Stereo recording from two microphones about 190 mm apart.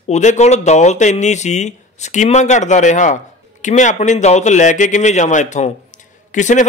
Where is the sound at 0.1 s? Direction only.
35° left (ahead or behind).